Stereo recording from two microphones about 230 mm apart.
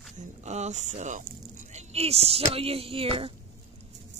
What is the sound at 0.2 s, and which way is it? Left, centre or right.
Speech, right.